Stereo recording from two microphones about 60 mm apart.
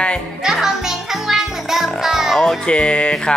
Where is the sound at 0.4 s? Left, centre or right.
Centre.